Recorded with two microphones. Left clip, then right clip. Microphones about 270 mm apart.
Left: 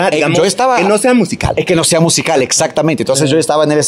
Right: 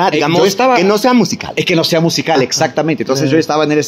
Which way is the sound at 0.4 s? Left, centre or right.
Left.